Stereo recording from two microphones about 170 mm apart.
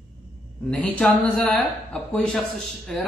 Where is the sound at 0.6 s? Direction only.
10° left (ahead or behind).